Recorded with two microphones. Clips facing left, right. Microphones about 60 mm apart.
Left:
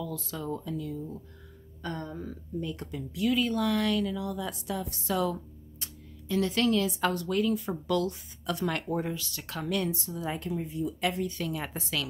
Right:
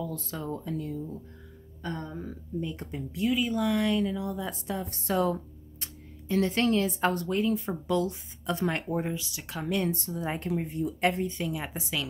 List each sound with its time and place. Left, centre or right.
0.0 s speech: right
1.8 s speech: centre
2.6 s a woman's voice: right
3.3 s a woman's voice: centre
9.8 s speech: right
10.5 s speech: right
11.3 s speech: centre